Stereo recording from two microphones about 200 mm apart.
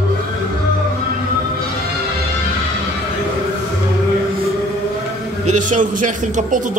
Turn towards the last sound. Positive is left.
turn(degrees=-40)  # may be behind; listen again after turning